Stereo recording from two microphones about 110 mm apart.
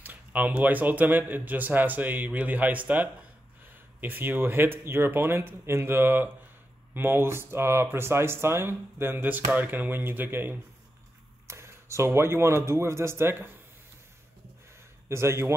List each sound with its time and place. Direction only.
0.0 s speech: 15° right (ahead or behind)
15.0 s speech: 25° right (ahead or behind)